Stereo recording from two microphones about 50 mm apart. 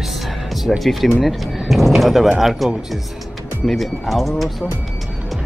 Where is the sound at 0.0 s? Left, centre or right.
Centre.